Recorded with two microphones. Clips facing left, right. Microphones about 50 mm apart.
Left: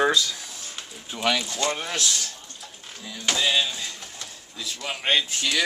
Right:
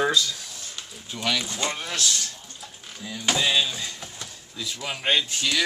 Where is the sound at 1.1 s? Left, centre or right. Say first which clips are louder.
Left 3 dB; left.